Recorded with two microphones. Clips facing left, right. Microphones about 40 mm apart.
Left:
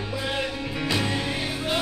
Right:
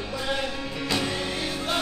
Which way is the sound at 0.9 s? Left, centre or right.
Centre.